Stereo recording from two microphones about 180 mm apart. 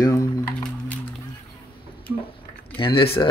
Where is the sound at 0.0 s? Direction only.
20° left (ahead or behind).